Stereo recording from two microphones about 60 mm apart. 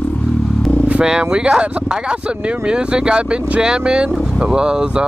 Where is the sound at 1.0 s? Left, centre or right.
Centre.